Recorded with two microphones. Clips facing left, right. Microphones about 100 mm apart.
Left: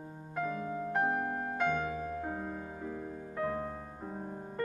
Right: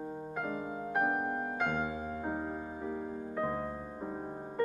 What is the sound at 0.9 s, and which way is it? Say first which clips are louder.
Music: right 1 dB; 10° right (ahead or behind).